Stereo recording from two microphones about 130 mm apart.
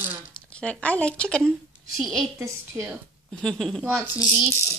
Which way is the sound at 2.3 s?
20° right (ahead or behind).